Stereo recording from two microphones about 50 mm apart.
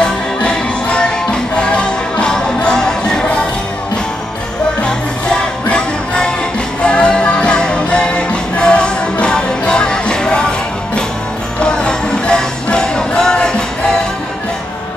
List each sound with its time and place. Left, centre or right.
0.0 s music: left
5.3 s music: centre
11.6 s music: centre